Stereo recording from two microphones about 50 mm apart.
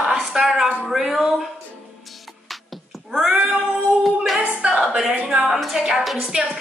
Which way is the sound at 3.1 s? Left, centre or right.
Centre.